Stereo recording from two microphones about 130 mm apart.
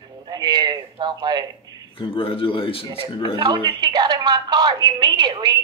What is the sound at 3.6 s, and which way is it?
A woman's voice, 35° right (ahead or behind).